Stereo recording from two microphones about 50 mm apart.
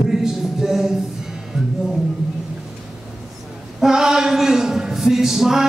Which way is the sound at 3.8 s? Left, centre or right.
Centre.